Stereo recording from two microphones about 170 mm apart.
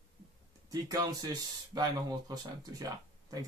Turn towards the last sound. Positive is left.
turn(degrees=-20)  # may be behind; listen again after turning